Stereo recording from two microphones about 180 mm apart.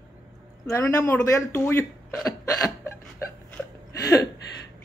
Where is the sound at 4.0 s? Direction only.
20° left (ahead or behind).